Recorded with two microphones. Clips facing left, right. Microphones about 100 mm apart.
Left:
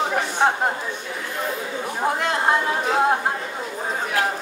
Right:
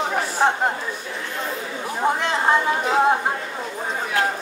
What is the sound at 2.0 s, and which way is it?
Speech, centre (ahead or behind).